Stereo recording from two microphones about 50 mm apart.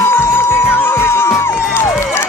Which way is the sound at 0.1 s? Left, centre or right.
Left.